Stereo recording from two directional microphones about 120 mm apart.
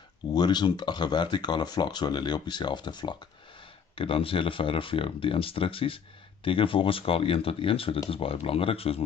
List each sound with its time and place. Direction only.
0.3 s speech: 35° left (ahead or behind); by 9.0 s 55° left (ahead or behind)